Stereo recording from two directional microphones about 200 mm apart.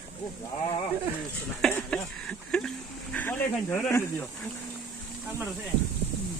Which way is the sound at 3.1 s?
10° left (ahead or behind).